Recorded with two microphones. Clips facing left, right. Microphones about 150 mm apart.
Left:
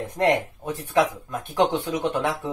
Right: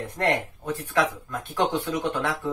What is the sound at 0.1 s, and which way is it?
Speech, 15° left (ahead or behind).